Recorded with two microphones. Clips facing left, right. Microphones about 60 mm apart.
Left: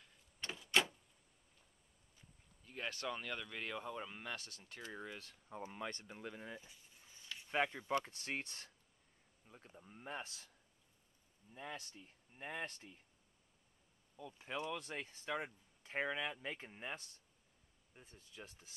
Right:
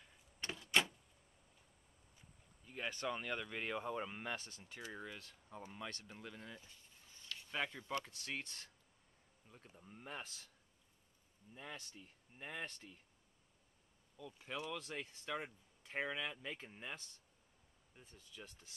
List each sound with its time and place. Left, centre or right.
0.4 s a sound: centre
2.6 s a sound: centre
2.9 s speech: centre
4.4 s speech: right
4.6 s speech: centre
5.5 s speech: centre
6.0 s a sound: centre
7.5 s speech: left
8.1 s speech: left
9.5 s speech: centre
11.5 s speech: centre
14.1 s speech: centre